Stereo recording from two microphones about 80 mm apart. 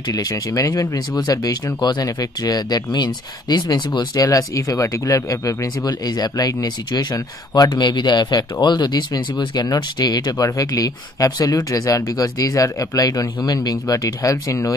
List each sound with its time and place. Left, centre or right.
0.1 s speech: left